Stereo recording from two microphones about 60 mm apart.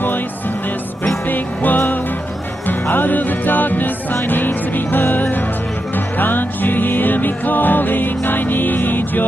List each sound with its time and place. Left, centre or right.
1.0 s music: left